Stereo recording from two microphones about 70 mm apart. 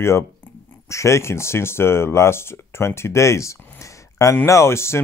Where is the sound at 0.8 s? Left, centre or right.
Left.